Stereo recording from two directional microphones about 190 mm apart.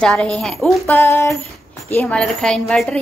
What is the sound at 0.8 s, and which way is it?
Speech, 15° left (ahead or behind).